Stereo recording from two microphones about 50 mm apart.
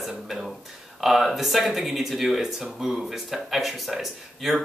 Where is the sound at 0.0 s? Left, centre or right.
Centre.